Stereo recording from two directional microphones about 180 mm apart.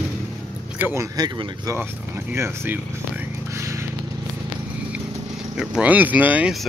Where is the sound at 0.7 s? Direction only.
15° right (ahead or behind).